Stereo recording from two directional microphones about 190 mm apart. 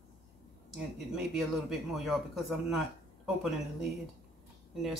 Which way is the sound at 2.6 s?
Centre (ahead or behind).